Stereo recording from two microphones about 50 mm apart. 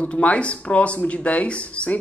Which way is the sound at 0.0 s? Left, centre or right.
Left.